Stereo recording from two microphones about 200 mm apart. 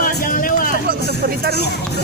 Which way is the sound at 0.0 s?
45° left (ahead or behind).